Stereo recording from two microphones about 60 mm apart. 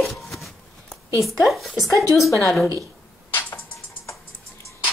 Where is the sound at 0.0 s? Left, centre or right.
Centre.